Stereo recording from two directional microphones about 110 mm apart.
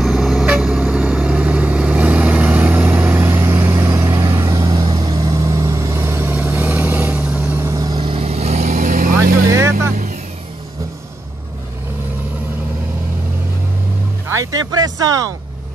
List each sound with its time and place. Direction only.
0.0 s vehicle: centre (ahead or behind); by 4.6 s 30° right (ahead or behind)
4.6 s vehicle: 40° right (ahead or behind); by 7.6 s 15° right (ahead or behind)
7.6 s vehicle: 30° right (ahead or behind)
8.0 s vehicle: 60° right (ahead or behind); by 8.7 s 80° right
9.1 s vehicle: 25° right (ahead or behind)
14.2 s a sound: 30° right (ahead or behind)